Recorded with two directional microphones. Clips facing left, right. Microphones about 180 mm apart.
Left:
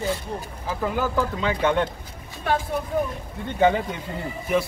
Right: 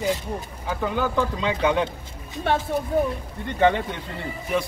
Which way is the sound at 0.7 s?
5° left (ahead or behind).